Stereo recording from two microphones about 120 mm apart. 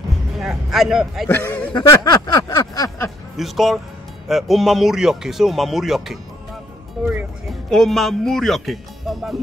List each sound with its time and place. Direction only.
0.4 s a man's voice: 5° right (ahead or behind)
1.3 s a man's voice: 15° left (ahead or behind)
1.7 s a sound: 40° left (ahead or behind)
3.3 s speech: centre (ahead or behind)
7.0 s music: centre (ahead or behind)
7.7 s speech: centre (ahead or behind)